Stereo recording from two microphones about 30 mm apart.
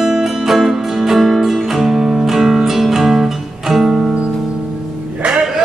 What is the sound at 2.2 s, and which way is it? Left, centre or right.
Music, centre.